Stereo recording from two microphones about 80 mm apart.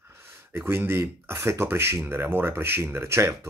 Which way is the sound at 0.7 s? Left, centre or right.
Right.